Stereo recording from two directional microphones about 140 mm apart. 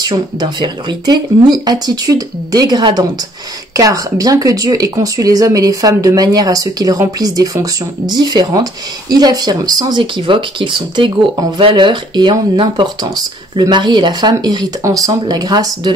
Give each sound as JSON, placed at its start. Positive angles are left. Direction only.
{"t": 0.0, "sound": "speech", "side_deg": -30}